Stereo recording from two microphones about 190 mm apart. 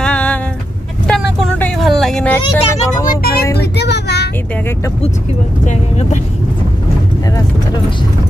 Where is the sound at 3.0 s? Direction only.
55° left (ahead or behind).